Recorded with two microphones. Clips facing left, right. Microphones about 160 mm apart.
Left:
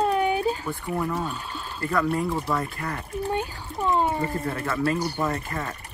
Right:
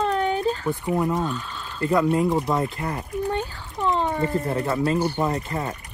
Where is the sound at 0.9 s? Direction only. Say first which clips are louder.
Right 4 dB; 20° right (ahead or behind).